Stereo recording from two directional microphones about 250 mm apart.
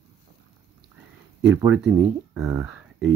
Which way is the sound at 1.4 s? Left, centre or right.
Centre.